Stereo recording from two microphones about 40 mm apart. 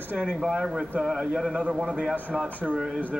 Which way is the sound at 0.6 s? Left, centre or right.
Centre.